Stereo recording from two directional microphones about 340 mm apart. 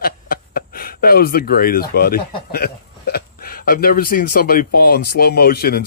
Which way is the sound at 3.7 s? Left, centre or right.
Left.